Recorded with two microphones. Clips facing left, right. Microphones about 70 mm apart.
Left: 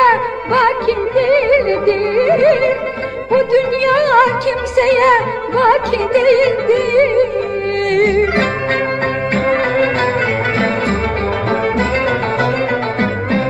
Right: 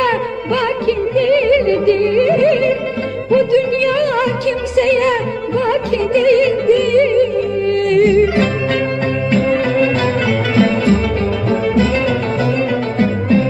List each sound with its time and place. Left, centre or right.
0.0 s music: left